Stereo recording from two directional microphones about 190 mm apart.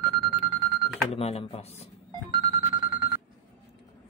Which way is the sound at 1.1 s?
35° left (ahead or behind).